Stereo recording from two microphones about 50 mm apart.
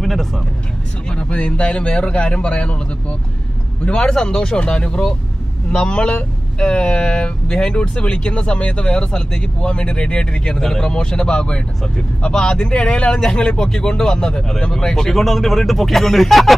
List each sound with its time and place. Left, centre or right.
0.0 s vehicle: centre
1.0 s speech: left; by 16.5 s centre